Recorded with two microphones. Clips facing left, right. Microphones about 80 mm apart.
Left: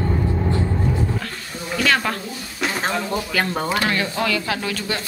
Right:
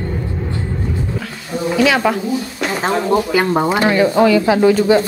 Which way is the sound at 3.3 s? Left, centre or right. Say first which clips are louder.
Right 7 dB; centre.